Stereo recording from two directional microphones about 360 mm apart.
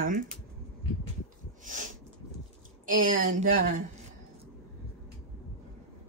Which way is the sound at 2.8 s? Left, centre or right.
Right.